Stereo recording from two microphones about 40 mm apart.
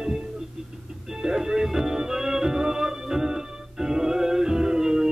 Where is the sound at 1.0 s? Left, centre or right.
Centre.